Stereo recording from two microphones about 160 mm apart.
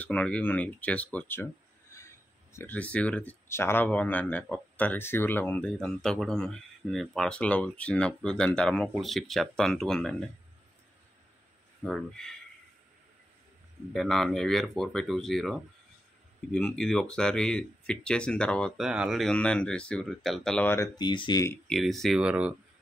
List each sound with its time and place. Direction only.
0.0 s speech: 10° left (ahead or behind)
1.9 s a sound: 15° left (ahead or behind)
2.5 s speech: 10° left (ahead or behind)
11.8 s speech: 5° left (ahead or behind)
13.9 s speech: centre (ahead or behind); by 21.5 s 30° left (ahead or behind)
21.6 s speech: centre (ahead or behind)